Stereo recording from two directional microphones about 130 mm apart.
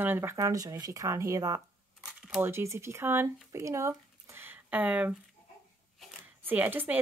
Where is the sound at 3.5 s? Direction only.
20° right (ahead or behind).